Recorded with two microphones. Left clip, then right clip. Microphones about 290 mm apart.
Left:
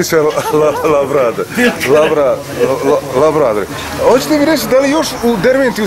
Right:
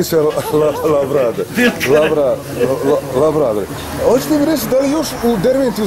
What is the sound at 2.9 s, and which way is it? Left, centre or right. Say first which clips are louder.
Speech: left 3 dB; centre.